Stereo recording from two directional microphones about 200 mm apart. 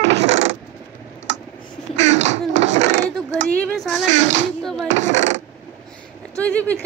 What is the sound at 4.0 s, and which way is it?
Speech, 35° right (ahead or behind).